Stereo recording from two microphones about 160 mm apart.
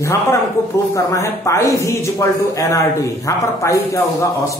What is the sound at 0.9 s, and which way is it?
Speech, 20° left (ahead or behind).